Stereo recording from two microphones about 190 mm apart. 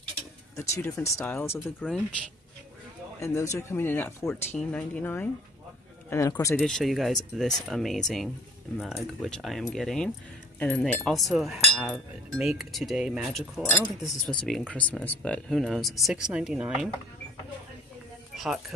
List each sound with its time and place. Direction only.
0.6 s speech: 15° left (ahead or behind)
3.2 s speech: 15° left (ahead or behind)
6.6 s speech: centre (ahead or behind)
13.7 s speech: 15° left (ahead or behind)
14.0 s speech: 5° left (ahead or behind)
18.3 s music: centre (ahead or behind)